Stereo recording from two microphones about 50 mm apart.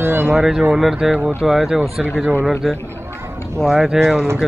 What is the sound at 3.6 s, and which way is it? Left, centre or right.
Speech, centre.